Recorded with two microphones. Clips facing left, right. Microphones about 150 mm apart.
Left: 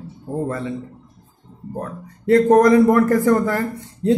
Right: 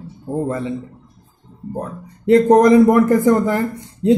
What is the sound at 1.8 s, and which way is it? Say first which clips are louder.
A man's voice: right 1 dB; 20° right (ahead or behind).